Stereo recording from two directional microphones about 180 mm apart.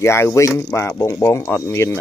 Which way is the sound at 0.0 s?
15° left (ahead or behind).